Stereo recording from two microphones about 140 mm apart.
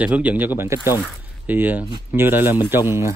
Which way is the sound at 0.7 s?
25° left (ahead or behind).